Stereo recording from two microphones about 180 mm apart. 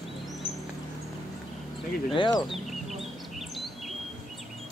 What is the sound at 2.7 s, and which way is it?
Bird, centre (ahead or behind).